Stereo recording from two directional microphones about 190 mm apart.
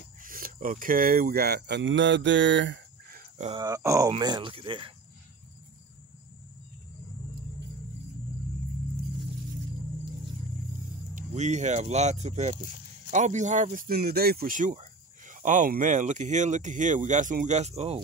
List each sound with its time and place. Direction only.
0.2 s speech: 45° right (ahead or behind); by 3.2 s 70° right (ahead or behind)
3.2 s a sound: 35° right (ahead or behind)
3.5 s speech: 20° right (ahead or behind)
11.1 s speech: 40° right (ahead or behind)